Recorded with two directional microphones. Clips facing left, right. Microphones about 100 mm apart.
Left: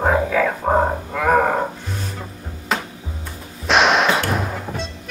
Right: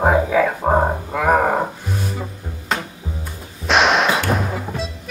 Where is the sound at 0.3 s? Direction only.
15° right (ahead or behind).